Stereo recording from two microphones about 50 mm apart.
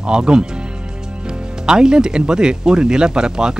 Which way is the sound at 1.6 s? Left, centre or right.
Centre.